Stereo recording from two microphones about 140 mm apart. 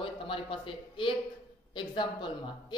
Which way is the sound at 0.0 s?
40° left (ahead or behind).